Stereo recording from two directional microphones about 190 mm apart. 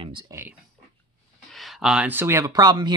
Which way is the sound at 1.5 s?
Centre (ahead or behind).